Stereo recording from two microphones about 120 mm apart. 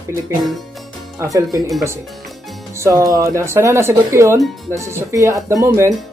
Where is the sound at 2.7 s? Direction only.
25° right (ahead or behind).